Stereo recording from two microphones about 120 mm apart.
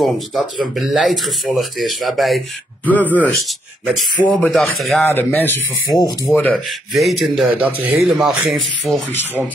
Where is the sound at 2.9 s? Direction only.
15° left (ahead or behind).